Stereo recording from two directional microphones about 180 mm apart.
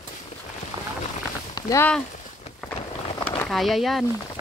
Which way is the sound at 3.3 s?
Centre (ahead or behind).